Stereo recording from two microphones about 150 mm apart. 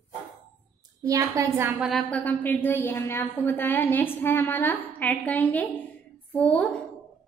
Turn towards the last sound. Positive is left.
turn(degrees=5)  # may be behind; listen again after turning